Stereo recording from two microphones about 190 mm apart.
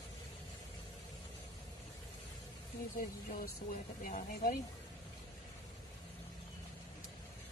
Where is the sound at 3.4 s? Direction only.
50° left (ahead or behind).